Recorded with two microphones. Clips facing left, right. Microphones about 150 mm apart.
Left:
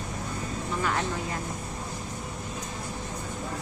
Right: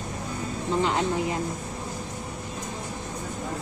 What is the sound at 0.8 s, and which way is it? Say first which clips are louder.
Speech: right 5 dB; 20° right (ahead or behind).